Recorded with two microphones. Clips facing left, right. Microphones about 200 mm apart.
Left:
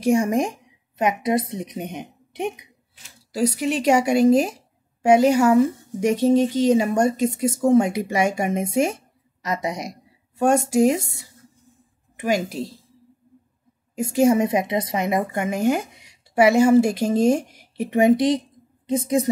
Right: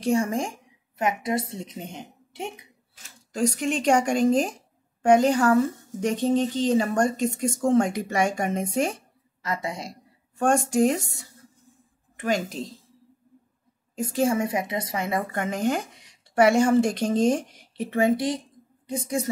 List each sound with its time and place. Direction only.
0.0 s a woman's voice: 15° left (ahead or behind)
12.2 s a woman's voice: 10° left (ahead or behind)
13.9 s a woman's voice: 10° left (ahead or behind)